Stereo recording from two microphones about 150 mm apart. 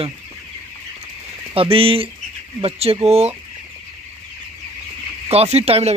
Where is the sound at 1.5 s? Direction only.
40° right (ahead or behind).